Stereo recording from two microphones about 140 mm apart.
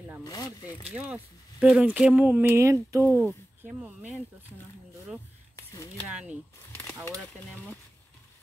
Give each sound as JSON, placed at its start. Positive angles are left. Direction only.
{"t": 0.2, "sound": "speech", "side_deg": 25}
{"t": 0.9, "sound": "speech", "side_deg": -10}
{"t": 5.6, "sound": "a sound", "side_deg": 25}